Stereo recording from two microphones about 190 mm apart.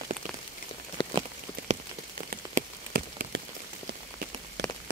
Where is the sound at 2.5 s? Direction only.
55° right (ahead or behind).